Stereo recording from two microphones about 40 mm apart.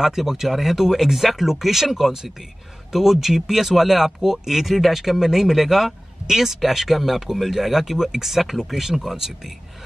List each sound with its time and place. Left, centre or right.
0.0 s speech: centre